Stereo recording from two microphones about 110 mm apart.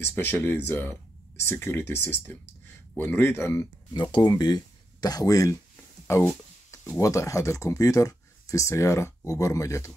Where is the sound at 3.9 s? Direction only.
40° left (ahead or behind).